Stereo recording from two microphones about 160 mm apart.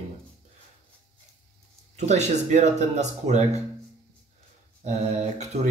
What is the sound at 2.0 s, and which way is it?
Speech, 45° right (ahead or behind).